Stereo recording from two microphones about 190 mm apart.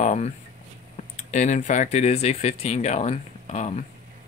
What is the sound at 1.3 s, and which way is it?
Speech, 40° left (ahead or behind).